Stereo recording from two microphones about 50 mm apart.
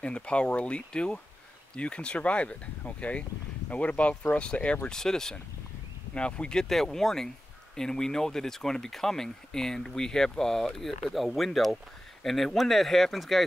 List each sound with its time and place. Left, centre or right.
0.0 s speech: left
4.8 s speech: centre
6.1 s speech: left; by 13.5 s centre